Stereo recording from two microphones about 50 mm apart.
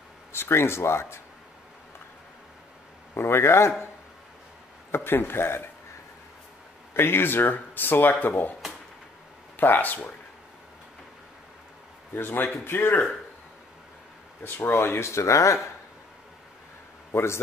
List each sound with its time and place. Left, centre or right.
0.3 s speech: left
3.2 s speech: left
4.9 s speech: left
6.9 s speech: left
9.6 s speech: left
12.1 s speech: left
14.4 s speech: left
15.0 s speech: left
17.1 s speech: left